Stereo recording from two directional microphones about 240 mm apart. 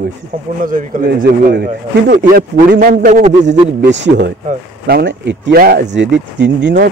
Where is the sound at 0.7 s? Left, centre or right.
Right.